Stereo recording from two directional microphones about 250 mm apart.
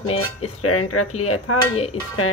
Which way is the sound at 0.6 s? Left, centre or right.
Left.